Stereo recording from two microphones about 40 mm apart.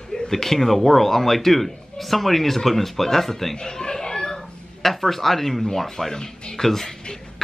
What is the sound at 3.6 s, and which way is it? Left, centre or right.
A man's voice, centre.